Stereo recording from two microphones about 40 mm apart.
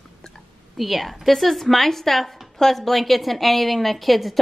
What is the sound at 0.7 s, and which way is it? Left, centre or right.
Speech, centre.